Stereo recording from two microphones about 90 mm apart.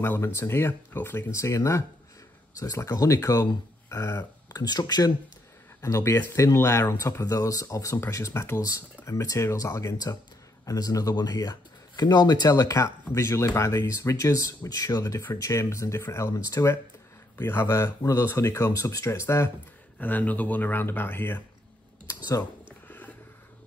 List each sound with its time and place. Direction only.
0.0 s speech: 30° left (ahead or behind); by 5.1 s 50° left (ahead or behind)
5.8 s speech: 35° left (ahead or behind)
22.8 s a sound: 20° left (ahead or behind)